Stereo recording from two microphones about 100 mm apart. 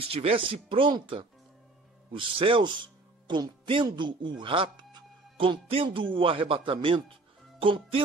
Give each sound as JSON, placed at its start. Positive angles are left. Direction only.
{"t": 0.1, "sound": "speech", "side_deg": -75}